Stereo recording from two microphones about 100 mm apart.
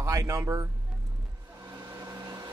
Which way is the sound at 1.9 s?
35° right (ahead or behind).